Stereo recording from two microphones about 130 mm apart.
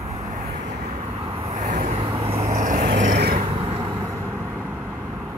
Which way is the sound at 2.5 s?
90° right.